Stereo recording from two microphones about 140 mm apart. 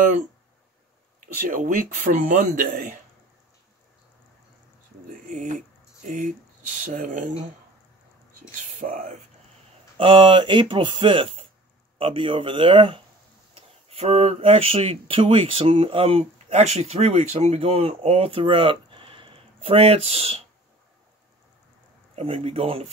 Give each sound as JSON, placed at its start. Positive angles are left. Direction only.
{"t": 1.2, "sound": "speech", "side_deg": -70}
{"t": 5.2, "sound": "speech", "side_deg": -65}
{"t": 8.5, "sound": "speech", "side_deg": -70}
{"t": 9.9, "sound": "speech", "side_deg": -35}
{"t": 22.1, "sound": "speech", "side_deg": -45}